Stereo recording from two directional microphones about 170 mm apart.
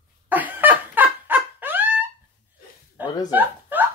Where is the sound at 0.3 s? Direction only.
10° right (ahead or behind).